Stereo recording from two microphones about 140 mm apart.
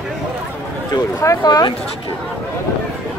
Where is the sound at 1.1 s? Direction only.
25° left (ahead or behind).